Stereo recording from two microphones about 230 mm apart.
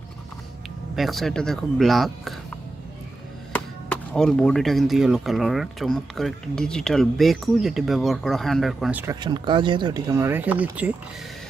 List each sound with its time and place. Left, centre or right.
0.9 s speech: centre
3.5 s speech: centre
9.0 s speech: centre